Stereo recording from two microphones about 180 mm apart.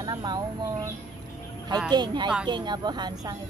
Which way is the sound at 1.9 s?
25° right (ahead or behind).